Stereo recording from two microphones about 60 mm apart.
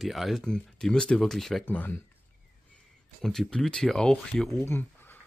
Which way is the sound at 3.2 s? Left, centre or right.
Centre.